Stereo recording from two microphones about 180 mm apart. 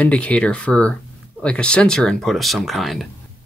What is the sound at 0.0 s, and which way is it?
Speech, 5° left (ahead or behind).